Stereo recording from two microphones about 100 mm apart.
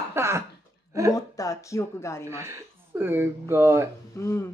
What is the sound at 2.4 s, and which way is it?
Speech, 25° right (ahead or behind).